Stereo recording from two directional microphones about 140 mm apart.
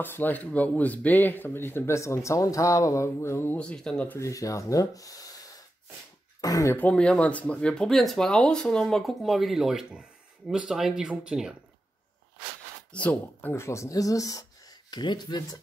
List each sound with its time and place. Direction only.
0.0 s speech: 15° left (ahead or behind)
4.2 s speech: 25° left (ahead or behind)
6.4 s speech: 25° left (ahead or behind); by 11.5 s 5° right (ahead or behind)
12.9 s speech: 10° left (ahead or behind); by 15.4 s 30° left (ahead or behind)